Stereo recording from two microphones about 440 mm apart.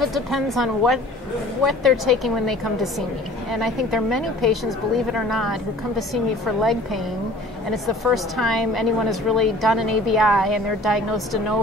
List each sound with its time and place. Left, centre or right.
0.0 s a woman's voice: centre